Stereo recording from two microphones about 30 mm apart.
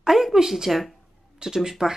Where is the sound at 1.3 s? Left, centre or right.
Centre.